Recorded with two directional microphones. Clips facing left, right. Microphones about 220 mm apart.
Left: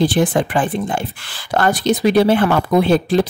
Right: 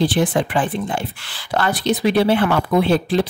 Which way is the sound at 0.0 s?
50° left (ahead or behind).